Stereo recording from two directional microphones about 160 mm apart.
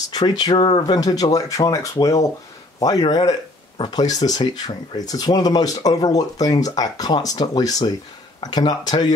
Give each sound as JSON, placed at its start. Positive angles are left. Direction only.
{"t": 0.1, "sound": "speech", "side_deg": 25}